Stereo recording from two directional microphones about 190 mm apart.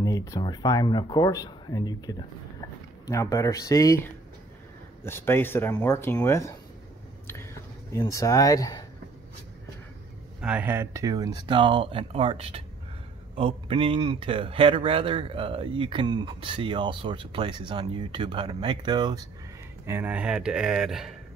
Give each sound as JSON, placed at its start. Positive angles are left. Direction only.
{"t": 0.0, "sound": "speech", "side_deg": 20}
{"t": 10.4, "sound": "speech", "side_deg": -10}
{"t": 19.9, "sound": "speech", "side_deg": -10}